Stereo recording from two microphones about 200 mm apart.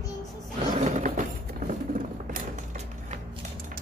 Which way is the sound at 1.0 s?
40° right (ahead or behind).